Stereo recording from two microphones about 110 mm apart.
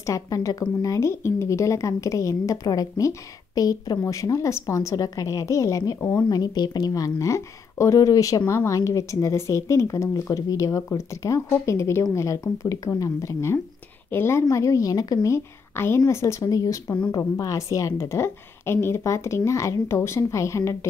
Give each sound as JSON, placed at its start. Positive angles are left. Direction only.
{"t": 0.0, "sound": "a woman's voice", "side_deg": 30}